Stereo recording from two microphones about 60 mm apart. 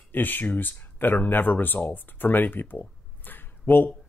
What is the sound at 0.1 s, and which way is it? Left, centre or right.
Speech, left.